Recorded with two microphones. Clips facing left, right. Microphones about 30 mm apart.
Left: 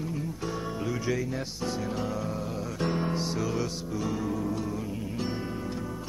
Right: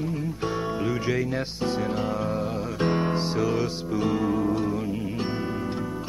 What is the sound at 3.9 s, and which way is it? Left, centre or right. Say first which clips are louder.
Music: right 7 dB; right.